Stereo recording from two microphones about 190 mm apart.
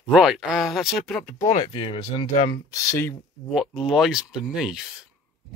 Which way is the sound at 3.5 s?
Centre (ahead or behind).